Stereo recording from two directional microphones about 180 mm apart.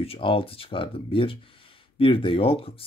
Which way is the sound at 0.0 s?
30° left (ahead or behind).